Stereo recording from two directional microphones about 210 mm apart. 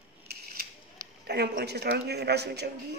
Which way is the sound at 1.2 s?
50° right (ahead or behind).